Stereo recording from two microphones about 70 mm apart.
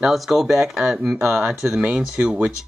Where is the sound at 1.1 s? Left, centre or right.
Right.